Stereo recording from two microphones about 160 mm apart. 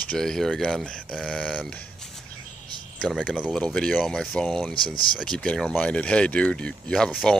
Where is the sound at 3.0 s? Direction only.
Centre (ahead or behind).